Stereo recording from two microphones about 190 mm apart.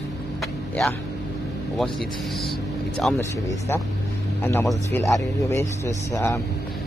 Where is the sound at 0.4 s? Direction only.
Centre (ahead or behind).